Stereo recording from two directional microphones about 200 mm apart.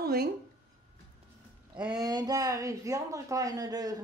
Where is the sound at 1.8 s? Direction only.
20° right (ahead or behind).